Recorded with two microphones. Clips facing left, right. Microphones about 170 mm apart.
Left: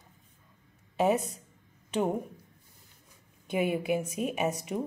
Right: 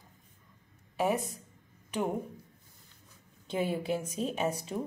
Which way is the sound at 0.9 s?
20° left (ahead or behind).